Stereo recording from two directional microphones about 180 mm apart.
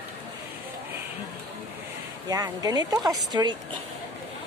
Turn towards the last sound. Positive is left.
turn(degrees=-20)  # may be behind; listen again after turning